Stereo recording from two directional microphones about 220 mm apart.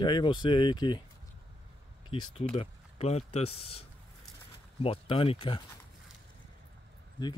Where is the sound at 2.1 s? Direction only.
25° left (ahead or behind).